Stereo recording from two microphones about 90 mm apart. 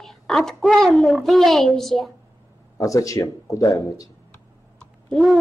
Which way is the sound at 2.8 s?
40° left (ahead or behind).